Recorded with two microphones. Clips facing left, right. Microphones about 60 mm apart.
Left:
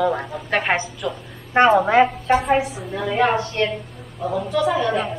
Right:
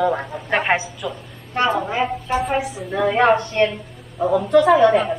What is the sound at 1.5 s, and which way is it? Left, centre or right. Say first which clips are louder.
Speech: left 6 dB; left.